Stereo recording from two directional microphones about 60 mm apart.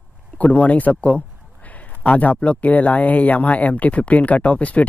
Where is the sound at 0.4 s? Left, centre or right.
Left.